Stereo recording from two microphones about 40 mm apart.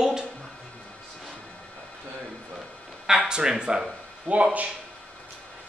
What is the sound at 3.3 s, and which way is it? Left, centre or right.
Speech, right.